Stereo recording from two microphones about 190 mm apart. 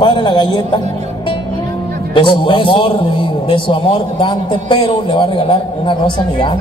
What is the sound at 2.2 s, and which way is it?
A man's voice, 25° left (ahead or behind).